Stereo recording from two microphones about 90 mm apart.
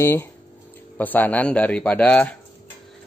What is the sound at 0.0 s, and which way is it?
Speech, 25° left (ahead or behind).